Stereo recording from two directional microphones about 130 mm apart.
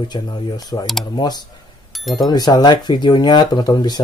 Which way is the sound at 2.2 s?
30° left (ahead or behind).